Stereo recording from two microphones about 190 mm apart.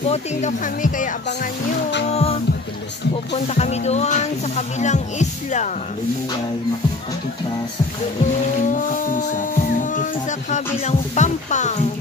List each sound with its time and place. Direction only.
0.0 s speech: 35° left (ahead or behind)
3.5 s speech: 35° left (ahead or behind)
8.6 s a sound: 45° left (ahead or behind)
10.5 s speech: 40° left (ahead or behind)